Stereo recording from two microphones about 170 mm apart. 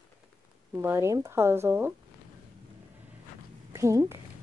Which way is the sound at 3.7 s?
20° right (ahead or behind).